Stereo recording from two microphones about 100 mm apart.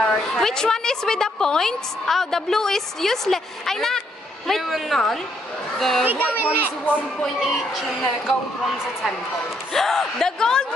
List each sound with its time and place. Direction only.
0.0 s a woman's voice: 5° left (ahead or behind)
6.1 s speech: 20° left (ahead or behind)
7.2 s a woman's voice: centre (ahead or behind)
9.7 s a woman's voice: 5° left (ahead or behind)